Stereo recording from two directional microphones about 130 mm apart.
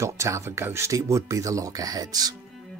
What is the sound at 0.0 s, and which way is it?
Speech, 20° right (ahead or behind).